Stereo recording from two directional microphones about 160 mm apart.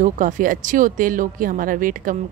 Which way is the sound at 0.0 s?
55° right (ahead or behind).